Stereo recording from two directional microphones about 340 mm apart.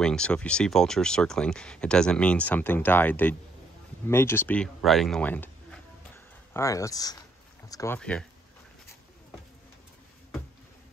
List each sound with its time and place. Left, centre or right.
0.0 s speech: centre